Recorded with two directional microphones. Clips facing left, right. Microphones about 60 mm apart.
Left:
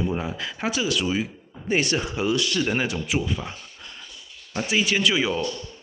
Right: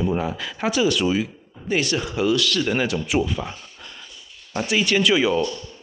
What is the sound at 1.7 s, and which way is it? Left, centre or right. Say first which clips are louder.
Speech: right 1 dB; centre.